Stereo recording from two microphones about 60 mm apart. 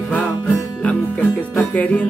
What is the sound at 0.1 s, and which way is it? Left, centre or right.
Music, left.